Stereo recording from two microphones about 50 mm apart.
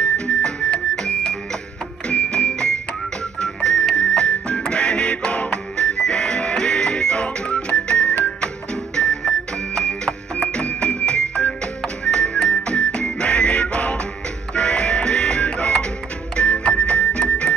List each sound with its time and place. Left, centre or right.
0.0 s music: centre
2.0 s music: left